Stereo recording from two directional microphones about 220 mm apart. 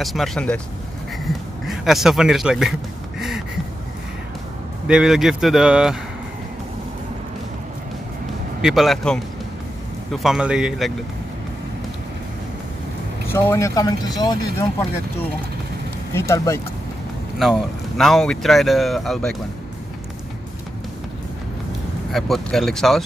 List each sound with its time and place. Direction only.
0.0 s speech: centre (ahead or behind)
1.7 s speech: centre (ahead or behind)
3.2 s a sound: centre (ahead or behind)
4.8 s speech: 5° right (ahead or behind)
8.5 s speech: centre (ahead or behind)
13.3 s speech: 10° left (ahead or behind)
16.1 s speech: 10° left (ahead or behind)
17.4 s speech: centre (ahead or behind)
22.1 s speech: centre (ahead or behind)